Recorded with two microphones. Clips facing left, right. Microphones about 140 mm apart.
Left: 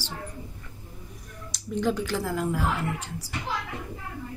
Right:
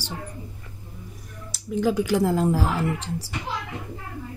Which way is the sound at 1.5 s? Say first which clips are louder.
Right 4 dB; 5° right (ahead or behind).